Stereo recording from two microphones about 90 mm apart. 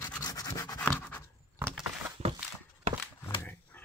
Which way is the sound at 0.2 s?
45° left (ahead or behind).